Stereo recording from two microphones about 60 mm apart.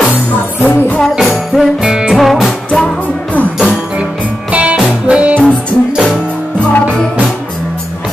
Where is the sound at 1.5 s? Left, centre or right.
Centre.